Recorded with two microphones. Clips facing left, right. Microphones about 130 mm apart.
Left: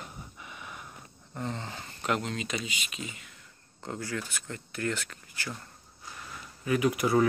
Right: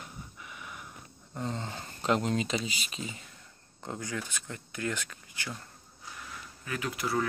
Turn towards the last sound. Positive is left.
turn(degrees=15)  # may be behind; listen again after turning